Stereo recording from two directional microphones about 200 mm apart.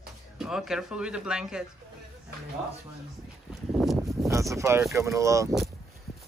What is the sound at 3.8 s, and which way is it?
Speech, centre (ahead or behind).